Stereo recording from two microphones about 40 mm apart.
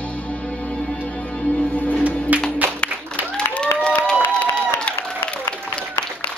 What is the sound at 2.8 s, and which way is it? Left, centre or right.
Music, left.